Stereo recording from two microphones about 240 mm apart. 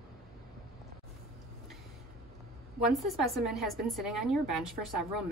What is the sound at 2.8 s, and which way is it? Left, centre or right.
A woman's voice, centre.